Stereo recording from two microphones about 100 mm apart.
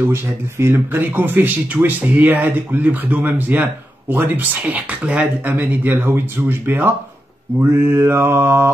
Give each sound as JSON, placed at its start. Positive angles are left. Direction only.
{"t": 0.1, "sound": "speech", "side_deg": -25}